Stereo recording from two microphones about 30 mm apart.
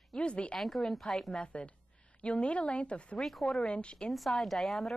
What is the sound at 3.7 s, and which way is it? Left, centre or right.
Speech, left.